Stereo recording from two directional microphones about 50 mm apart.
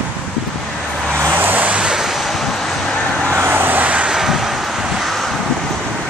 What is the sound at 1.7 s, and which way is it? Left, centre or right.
Vehicle, centre.